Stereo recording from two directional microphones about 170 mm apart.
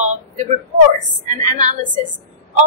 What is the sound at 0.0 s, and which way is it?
A woman's voice, 45° right (ahead or behind).